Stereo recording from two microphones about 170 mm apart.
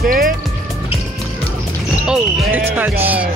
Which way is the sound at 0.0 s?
55° right (ahead or behind).